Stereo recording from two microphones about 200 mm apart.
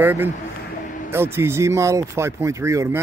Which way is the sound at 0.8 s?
40° left (ahead or behind).